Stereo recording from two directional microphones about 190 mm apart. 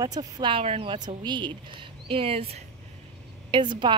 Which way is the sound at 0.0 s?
20° right (ahead or behind).